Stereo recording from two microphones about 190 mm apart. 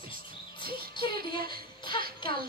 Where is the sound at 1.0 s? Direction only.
25° left (ahead or behind).